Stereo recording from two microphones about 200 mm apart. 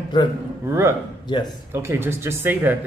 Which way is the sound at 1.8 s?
10° right (ahead or behind).